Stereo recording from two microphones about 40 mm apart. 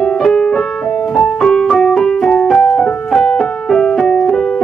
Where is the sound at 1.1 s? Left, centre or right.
Centre.